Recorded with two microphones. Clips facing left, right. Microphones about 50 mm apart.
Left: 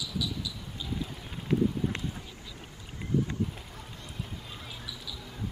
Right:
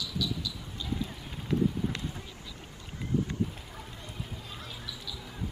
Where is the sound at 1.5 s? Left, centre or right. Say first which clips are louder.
Left 2 dB; left.